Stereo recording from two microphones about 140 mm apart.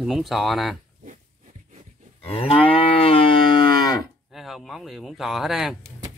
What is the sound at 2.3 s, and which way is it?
Moo, 45° left (ahead or behind).